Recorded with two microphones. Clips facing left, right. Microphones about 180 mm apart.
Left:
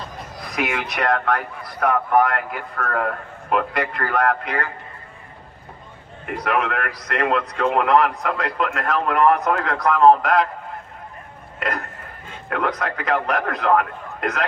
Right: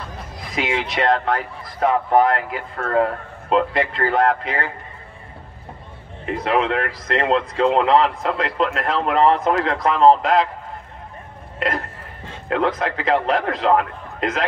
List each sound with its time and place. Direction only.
0.5 s speech: 25° right (ahead or behind)
6.2 s speech: 25° right (ahead or behind)
12.4 s speech: 25° right (ahead or behind)